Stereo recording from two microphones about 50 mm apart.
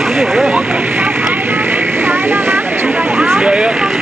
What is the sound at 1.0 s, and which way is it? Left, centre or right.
Vehicle, right.